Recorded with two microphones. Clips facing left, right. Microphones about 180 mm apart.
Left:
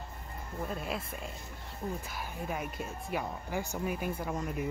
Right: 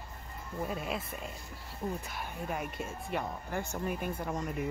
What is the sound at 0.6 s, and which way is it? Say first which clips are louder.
Speech: right 1 dB; centre (ahead or behind).